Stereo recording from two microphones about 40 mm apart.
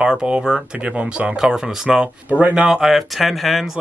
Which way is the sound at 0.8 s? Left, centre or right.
Right.